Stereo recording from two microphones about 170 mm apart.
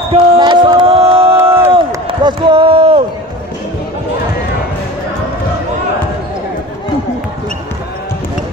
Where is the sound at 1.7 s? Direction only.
30° right (ahead or behind).